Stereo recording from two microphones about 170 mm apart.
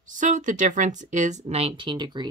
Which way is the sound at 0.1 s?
50° right (ahead or behind).